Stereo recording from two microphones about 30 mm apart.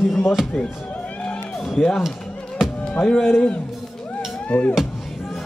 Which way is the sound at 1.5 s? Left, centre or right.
Centre.